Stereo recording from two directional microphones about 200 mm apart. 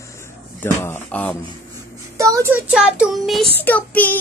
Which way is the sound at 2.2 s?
15° right (ahead or behind).